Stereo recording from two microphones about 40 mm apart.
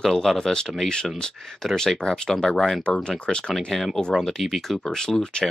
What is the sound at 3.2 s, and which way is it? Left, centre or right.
Speech, left.